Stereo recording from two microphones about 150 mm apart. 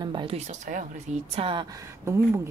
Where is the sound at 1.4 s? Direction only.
35° right (ahead or behind).